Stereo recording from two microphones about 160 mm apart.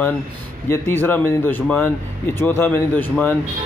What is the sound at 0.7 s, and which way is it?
Speech, 15° left (ahead or behind).